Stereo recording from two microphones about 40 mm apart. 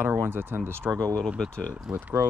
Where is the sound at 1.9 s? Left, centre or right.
Right.